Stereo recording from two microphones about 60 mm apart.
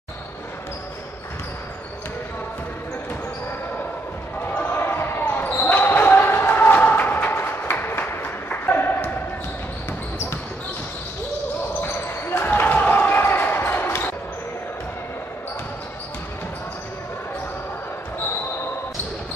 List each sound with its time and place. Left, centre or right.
4.4 s basketball bounce: left
11.8 s basketball bounce: left
12.4 s basketball bounce: left